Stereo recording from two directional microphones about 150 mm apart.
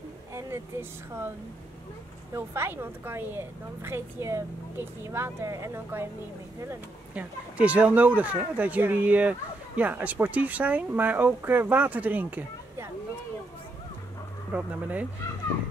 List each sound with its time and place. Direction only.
0.3 s speech: 20° right (ahead or behind)
2.3 s speech: 15° right (ahead or behind)
7.5 s speech: 10° right (ahead or behind)
14.5 s speech: 10° right (ahead or behind)